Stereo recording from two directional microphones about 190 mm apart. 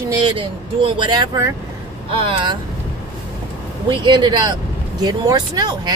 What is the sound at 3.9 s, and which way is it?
Speech, 25° right (ahead or behind).